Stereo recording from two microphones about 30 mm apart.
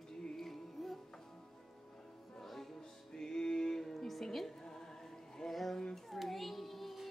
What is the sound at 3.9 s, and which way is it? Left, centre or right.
Music, centre.